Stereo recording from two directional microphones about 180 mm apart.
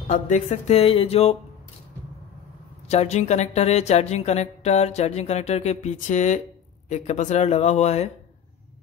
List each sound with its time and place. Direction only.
0.1 s speech: 40° left (ahead or behind)
2.9 s speech: 35° left (ahead or behind)